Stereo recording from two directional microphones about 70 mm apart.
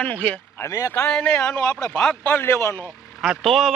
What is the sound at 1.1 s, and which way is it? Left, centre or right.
Speech, centre.